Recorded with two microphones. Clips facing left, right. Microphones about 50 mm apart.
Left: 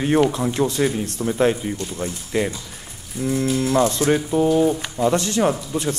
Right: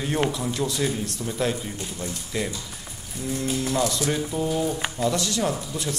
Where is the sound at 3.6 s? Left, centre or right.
Left.